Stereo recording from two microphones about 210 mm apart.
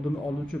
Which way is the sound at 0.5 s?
5° left (ahead or behind).